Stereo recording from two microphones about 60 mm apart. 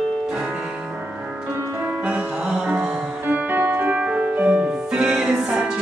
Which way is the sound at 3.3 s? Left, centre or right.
Right.